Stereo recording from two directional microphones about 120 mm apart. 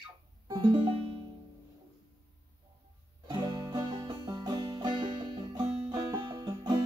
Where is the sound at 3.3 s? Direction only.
40° right (ahead or behind).